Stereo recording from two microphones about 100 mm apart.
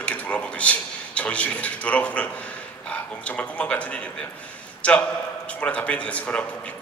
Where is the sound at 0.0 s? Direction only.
10° left (ahead or behind).